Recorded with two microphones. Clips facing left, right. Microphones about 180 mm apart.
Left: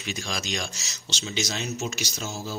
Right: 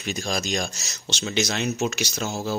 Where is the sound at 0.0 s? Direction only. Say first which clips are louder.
Right 5 dB; 45° right (ahead or behind).